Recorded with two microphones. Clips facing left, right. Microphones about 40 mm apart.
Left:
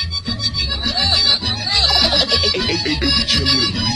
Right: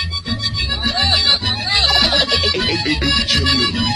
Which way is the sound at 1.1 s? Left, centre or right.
Right.